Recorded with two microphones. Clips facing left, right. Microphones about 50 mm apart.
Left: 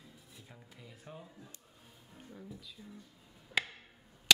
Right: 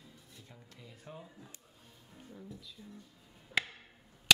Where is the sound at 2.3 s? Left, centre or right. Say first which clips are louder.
Even; centre.